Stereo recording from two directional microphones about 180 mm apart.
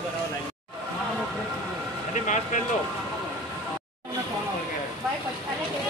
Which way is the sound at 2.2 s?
45° left (ahead or behind).